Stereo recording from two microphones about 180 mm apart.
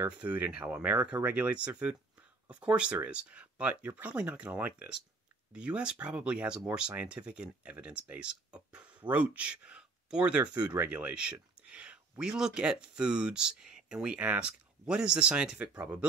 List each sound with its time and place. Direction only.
0.0 s speech: 10° right (ahead or behind)
10.4 s speech: 20° right (ahead or behind)
10.8 s speech: 10° right (ahead or behind)